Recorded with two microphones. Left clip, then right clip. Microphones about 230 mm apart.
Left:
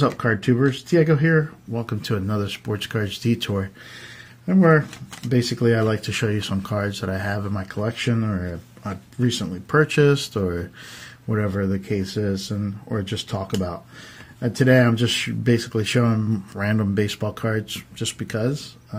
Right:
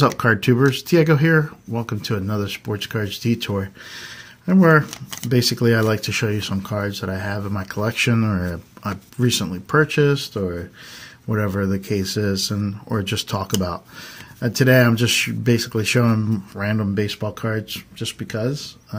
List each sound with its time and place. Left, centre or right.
0.2 s speech: centre
4.5 s speech: centre
9.8 s speech: centre
11.2 s speech: centre